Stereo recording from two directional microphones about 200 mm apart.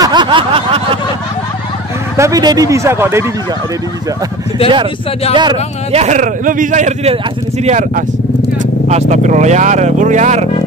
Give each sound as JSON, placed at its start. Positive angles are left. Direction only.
{"t": 0.0, "sound": "a sound", "side_deg": -20}
{"t": 2.1, "sound": "speech", "side_deg": -15}
{"t": 5.3, "sound": "speech", "side_deg": -25}